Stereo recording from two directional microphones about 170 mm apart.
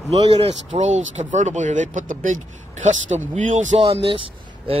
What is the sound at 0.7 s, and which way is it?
Speech, 45° right (ahead or behind).